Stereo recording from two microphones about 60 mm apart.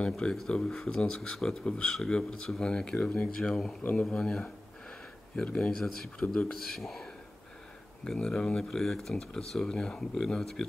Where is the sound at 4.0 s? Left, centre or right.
Centre.